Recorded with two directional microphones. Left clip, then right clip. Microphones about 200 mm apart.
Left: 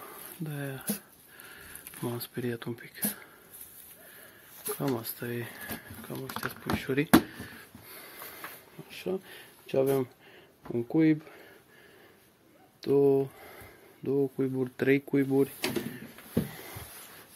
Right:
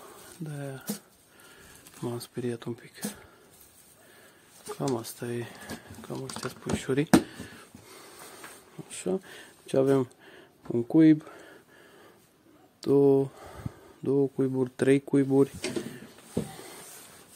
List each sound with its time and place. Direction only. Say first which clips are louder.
0.0 s a sound: left 1 dB; centre (ahead or behind)
2.0 s speech: right 1 dB; 5° right (ahead or behind)
4.7 s speech: right 2 dB; 10° right (ahead or behind)
8.9 s speech: right 3 dB; 35° right (ahead or behind)
12.8 s speech: right 2 dB; 35° right (ahead or behind)